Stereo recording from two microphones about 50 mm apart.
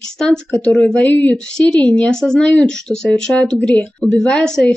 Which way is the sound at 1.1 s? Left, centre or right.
Left.